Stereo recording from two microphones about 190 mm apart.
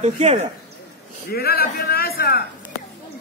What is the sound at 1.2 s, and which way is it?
A man's voice, 55° left (ahead or behind).